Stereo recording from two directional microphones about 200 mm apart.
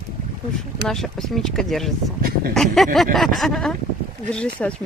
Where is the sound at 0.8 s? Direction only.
Centre (ahead or behind).